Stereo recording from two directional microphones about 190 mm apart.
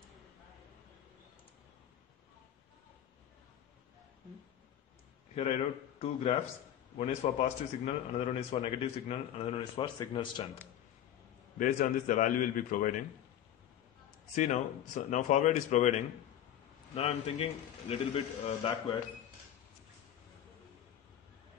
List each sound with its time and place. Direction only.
5.3 s a man's voice: 30° left (ahead or behind)
11.5 s a man's voice: 45° left (ahead or behind)
14.3 s a man's voice: 40° left (ahead or behind)